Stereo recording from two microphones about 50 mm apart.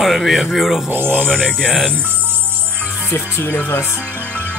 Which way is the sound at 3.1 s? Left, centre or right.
Left.